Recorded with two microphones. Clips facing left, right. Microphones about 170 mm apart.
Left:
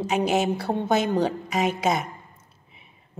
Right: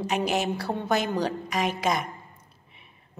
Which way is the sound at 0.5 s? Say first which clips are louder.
Left 3 dB; 25° left (ahead or behind).